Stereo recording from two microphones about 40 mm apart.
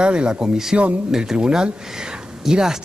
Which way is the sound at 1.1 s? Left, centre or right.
Centre.